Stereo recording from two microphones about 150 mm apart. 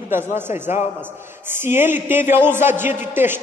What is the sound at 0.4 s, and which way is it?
A man's voice, 15° right (ahead or behind).